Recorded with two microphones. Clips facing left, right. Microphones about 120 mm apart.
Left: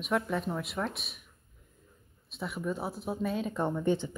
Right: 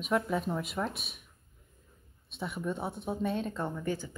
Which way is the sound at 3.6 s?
25° left (ahead or behind).